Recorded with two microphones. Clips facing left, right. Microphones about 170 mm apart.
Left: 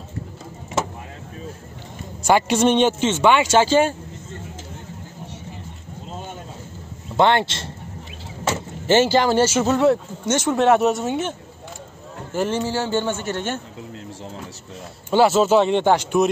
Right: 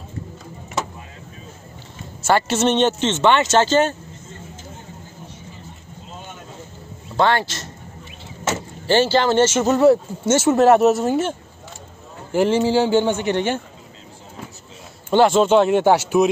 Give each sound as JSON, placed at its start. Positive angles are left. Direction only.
{"t": 2.2, "sound": "speech", "side_deg": 15}
{"t": 7.2, "sound": "a man's voice", "side_deg": 20}
{"t": 8.8, "sound": "a man's voice", "side_deg": 20}
{"t": 15.1, "sound": "speech", "side_deg": 5}